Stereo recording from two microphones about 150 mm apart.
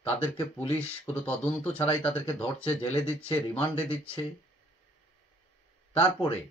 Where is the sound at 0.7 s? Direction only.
10° left (ahead or behind).